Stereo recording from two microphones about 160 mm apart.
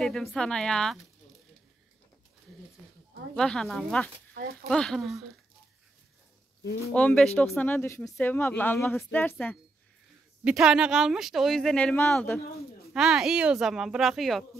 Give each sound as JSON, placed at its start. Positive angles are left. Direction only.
{"t": 0.0, "sound": "speech", "side_deg": 0}
{"t": 3.3, "sound": "speech", "side_deg": 0}
{"t": 4.3, "sound": "a sound", "side_deg": -70}
{"t": 4.6, "sound": "speech", "side_deg": 5}
{"t": 6.9, "sound": "speech", "side_deg": 5}
{"t": 10.4, "sound": "speech", "side_deg": -5}
{"t": 12.9, "sound": "speech", "side_deg": -5}